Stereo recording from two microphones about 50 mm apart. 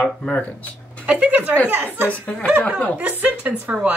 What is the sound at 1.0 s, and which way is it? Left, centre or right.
Speech, right.